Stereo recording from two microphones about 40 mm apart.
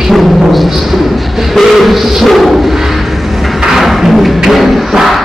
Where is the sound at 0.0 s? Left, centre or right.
Centre.